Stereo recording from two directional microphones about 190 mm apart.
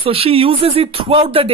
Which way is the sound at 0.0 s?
30° right (ahead or behind).